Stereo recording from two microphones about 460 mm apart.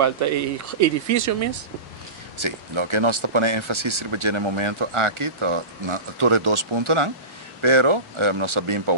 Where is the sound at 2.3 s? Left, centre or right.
Right.